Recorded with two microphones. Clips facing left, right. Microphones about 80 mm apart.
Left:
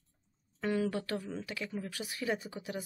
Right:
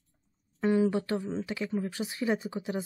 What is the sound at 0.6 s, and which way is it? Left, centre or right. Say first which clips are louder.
Speech: right 7 dB; right.